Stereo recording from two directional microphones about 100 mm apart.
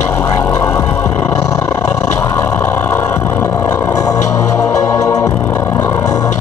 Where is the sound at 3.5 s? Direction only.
30° left (ahead or behind).